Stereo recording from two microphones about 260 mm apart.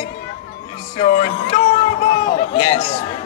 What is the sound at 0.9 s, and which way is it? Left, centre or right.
A man's voice, left.